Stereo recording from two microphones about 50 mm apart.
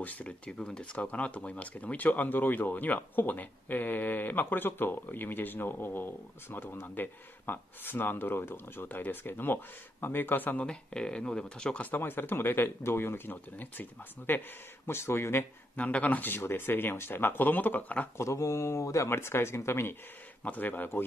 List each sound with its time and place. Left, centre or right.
0.0 s speech: left
0.5 s speech: centre
0.9 s speech: left
10.6 s speech: centre
11.8 s speech: left
14.9 s speech: left
15.7 s speech: left
18.1 s speech: left
19.0 s speech: left
20.4 s speech: left